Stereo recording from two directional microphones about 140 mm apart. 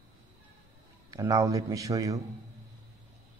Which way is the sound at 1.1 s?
25° right (ahead or behind).